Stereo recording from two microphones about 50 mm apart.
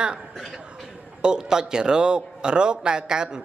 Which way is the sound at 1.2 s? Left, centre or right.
Centre.